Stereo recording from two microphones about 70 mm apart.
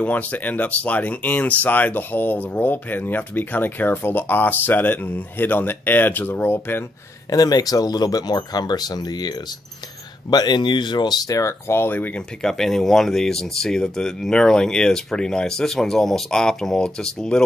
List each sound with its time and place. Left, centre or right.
0.0 s speech: left
7.2 s speech: left
10.3 s speech: left
11.3 s speech: left
12.4 s speech: centre